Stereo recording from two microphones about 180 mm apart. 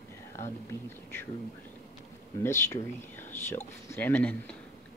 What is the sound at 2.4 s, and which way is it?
Speech, 15° left (ahead or behind).